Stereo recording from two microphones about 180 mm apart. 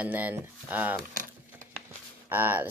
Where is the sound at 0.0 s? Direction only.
10° right (ahead or behind).